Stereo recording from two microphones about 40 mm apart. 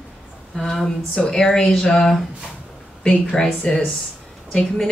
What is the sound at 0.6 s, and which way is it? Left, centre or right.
Speech, centre.